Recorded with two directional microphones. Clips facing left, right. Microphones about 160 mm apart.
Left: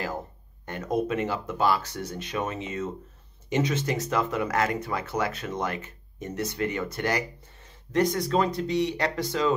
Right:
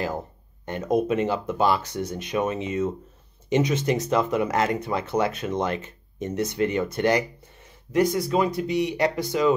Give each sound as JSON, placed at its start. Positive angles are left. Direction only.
{"t": 0.7, "sound": "speech", "side_deg": -20}
{"t": 7.9, "sound": "speech", "side_deg": -5}